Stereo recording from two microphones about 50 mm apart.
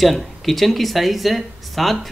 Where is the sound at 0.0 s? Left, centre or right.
Centre.